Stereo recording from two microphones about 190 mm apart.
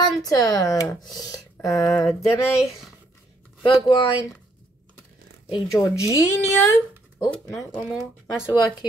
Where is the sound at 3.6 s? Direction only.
25° left (ahead or behind).